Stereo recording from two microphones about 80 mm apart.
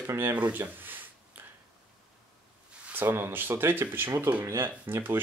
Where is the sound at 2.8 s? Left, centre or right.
Right.